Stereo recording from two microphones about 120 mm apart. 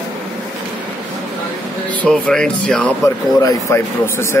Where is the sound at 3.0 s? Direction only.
25° left (ahead or behind).